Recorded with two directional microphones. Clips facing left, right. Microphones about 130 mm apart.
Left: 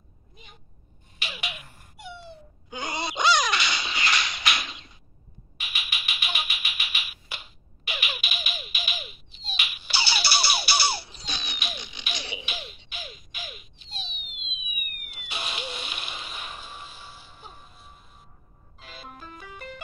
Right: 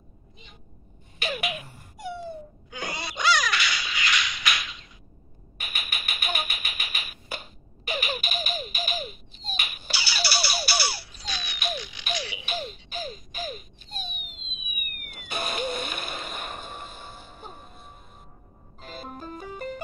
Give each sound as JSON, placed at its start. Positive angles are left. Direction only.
{"t": 2.7, "sound": "a sound", "side_deg": 20}
{"t": 5.6, "sound": "typewriter", "side_deg": -50}
{"t": 9.9, "sound": "music", "side_deg": 25}
{"t": 12.2, "sound": "a sound", "side_deg": 25}
{"t": 12.4, "sound": "baby laughter", "side_deg": -40}
{"t": 18.8, "sound": "music", "side_deg": -45}